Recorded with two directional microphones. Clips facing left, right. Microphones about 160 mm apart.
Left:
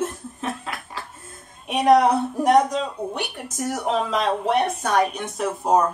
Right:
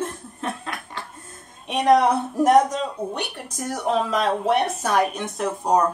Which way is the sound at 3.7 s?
Centre (ahead or behind).